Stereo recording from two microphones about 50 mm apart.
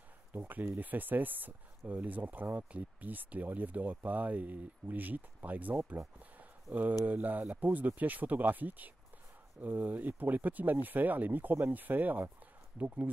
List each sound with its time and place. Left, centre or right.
0.3 s speech: right